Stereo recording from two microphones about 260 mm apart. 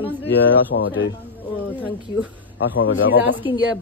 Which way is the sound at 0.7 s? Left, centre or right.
Left.